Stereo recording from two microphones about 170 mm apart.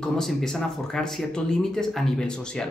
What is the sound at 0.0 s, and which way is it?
Speech, 5° left (ahead or behind).